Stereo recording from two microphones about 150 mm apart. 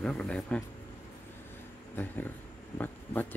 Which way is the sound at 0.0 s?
5° left (ahead or behind).